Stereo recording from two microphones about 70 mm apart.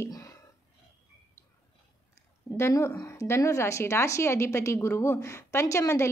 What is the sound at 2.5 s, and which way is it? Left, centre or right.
Speech, centre.